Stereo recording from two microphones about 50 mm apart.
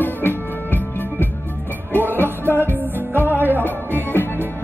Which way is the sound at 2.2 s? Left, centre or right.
Right.